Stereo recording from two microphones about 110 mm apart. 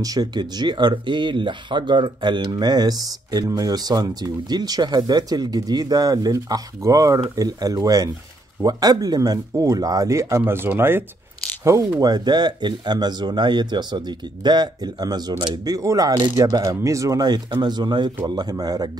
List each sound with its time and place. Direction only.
0.0 s speech: 35° right (ahead or behind)